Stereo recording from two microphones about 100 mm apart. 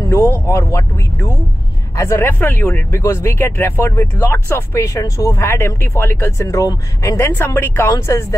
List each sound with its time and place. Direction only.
0.1 s speech: 25° left (ahead or behind)